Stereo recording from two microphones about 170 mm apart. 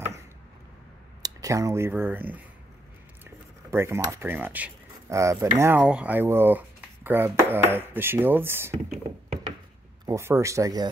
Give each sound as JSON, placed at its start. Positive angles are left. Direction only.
{"t": 1.2, "sound": "speech", "side_deg": -20}
{"t": 10.0, "sound": "speech", "side_deg": -15}